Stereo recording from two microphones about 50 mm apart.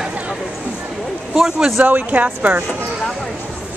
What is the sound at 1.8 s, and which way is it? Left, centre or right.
Speech, right.